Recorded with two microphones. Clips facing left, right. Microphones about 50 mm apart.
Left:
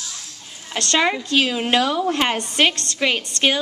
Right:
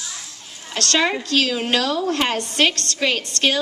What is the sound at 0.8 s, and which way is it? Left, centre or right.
A woman's voice, left.